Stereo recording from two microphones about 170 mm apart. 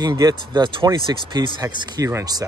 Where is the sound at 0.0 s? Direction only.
20° right (ahead or behind).